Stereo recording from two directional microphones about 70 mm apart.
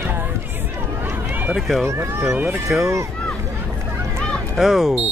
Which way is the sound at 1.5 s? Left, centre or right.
Centre.